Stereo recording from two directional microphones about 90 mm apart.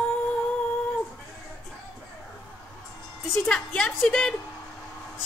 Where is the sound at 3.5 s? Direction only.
10° left (ahead or behind).